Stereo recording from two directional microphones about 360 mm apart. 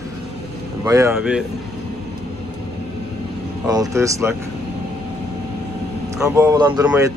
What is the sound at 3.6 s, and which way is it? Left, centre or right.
Speech, centre.